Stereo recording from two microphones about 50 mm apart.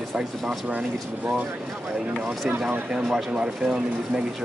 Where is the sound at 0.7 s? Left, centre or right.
Right.